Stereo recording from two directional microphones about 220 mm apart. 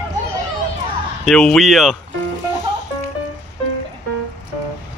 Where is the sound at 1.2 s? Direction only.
Centre (ahead or behind).